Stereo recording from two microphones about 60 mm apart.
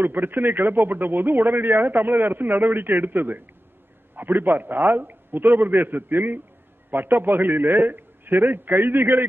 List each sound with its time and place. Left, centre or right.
0.0 s a man's voice: right